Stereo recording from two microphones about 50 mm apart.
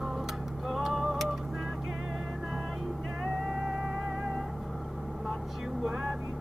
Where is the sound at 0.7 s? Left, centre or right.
Centre.